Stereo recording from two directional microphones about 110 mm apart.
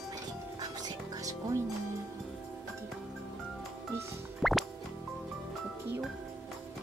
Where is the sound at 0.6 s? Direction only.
35° right (ahead or behind).